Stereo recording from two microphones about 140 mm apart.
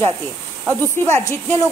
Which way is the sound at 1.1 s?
20° left (ahead or behind).